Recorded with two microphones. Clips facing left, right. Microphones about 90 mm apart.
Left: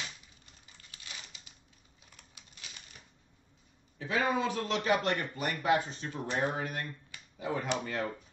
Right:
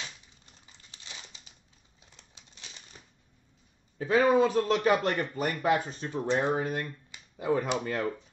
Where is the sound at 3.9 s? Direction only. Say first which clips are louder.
Right 8 dB; 40° right (ahead or behind).